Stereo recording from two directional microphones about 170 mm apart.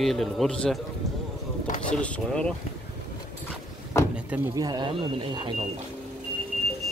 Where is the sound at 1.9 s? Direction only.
5° left (ahead or behind).